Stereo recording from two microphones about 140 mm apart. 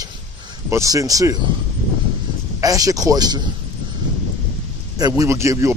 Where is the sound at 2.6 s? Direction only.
25° right (ahead or behind).